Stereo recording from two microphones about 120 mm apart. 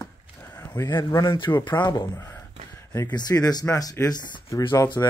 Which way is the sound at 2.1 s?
20° left (ahead or behind).